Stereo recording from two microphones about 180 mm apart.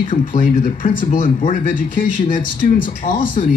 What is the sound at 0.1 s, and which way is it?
Speech, 50° left (ahead or behind).